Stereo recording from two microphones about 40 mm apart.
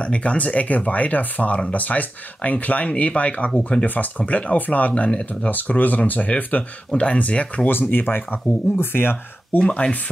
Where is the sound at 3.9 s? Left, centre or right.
Left.